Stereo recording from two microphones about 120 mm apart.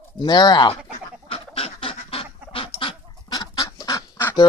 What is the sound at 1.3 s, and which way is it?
Goose, 50° left (ahead or behind).